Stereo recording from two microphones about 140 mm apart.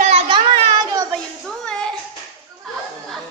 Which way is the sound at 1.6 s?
5° left (ahead or behind).